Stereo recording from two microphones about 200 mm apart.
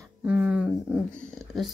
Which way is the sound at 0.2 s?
5° right (ahead or behind).